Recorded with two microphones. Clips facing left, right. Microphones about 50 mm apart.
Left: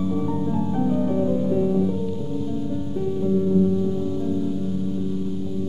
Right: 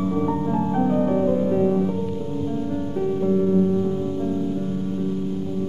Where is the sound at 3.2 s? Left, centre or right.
Right.